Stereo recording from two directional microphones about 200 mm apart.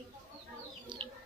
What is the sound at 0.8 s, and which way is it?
Chicken, 25° right (ahead or behind).